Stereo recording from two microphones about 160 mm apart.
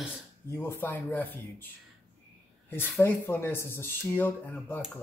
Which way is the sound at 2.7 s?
15° left (ahead or behind).